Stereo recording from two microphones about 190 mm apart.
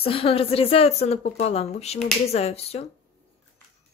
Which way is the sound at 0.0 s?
30° left (ahead or behind).